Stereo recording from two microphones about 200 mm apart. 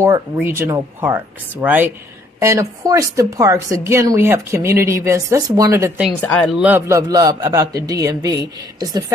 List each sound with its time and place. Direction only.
0.0 s a woman's voice: 10° right (ahead or behind)
6.2 s a woman's voice: 5° left (ahead or behind); by 8.4 s 20° right (ahead or behind)